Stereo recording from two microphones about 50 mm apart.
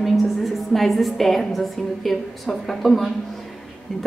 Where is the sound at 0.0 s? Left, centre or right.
Centre.